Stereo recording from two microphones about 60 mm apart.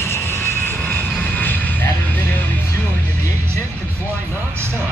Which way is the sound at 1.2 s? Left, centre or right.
Left.